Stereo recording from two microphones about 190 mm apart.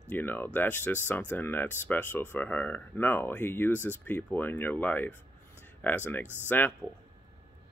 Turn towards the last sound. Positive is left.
turn(degrees=10)  # may be behind; listen again after turning